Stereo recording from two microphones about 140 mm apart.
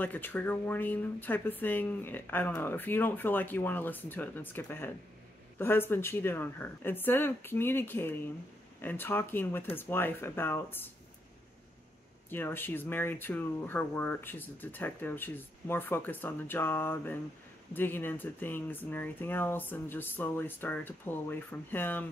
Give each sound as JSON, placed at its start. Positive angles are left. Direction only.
{"t": 0.0, "sound": "speech", "side_deg": 15}
{"t": 12.3, "sound": "speech", "side_deg": 15}